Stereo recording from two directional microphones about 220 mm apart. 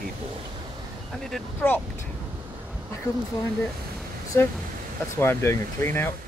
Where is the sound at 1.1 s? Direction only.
Centre (ahead or behind).